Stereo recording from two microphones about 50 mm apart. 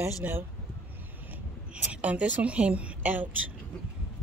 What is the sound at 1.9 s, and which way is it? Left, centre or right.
A woman's voice, right.